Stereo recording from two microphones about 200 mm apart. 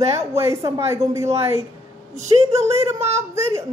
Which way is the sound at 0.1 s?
30° right (ahead or behind).